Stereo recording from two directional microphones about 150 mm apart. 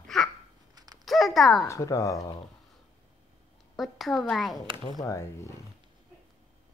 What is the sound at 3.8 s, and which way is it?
Speech, centre (ahead or behind).